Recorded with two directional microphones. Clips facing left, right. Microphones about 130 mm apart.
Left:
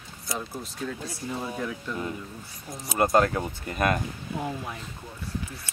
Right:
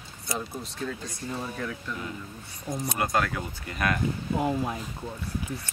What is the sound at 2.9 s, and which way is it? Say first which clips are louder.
Speech: left 7 dB; 30° left (ahead or behind).